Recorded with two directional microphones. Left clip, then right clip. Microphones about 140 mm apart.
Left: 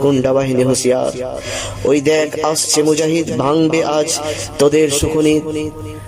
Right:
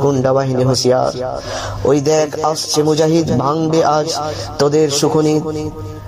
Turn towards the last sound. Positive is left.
turn(degrees=20)  # may be behind; listen again after turning